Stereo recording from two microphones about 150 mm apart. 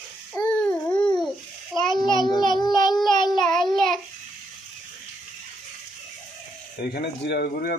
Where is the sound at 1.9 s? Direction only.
30° left (ahead or behind).